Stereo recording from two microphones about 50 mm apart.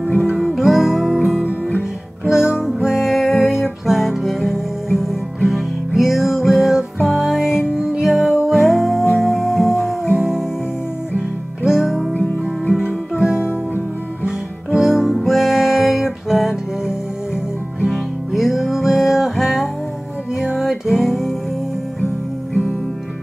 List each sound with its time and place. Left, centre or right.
0.4 s music: centre
1.8 s music: centre
11.1 s music: centre
12.1 s music: left
14.2 s music: centre
17.8 s music: centre